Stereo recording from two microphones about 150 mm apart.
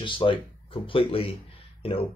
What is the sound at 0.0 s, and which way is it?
Speech, 35° left (ahead or behind).